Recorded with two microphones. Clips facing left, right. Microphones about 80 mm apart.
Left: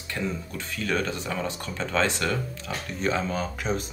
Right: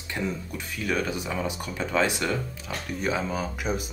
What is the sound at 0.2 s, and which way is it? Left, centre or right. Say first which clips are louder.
Speech: even; centre.